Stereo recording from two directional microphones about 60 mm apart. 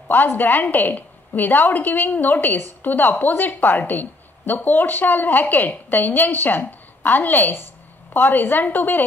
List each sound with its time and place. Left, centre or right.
0.1 s a woman's voice: left